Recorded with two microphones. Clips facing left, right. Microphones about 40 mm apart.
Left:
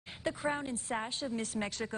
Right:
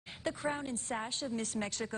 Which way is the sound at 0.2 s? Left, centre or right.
Centre.